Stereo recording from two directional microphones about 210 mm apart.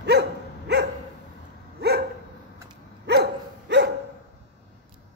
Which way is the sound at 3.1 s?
55° right (ahead or behind).